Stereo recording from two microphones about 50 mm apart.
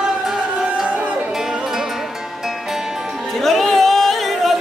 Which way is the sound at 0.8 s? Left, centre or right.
Right.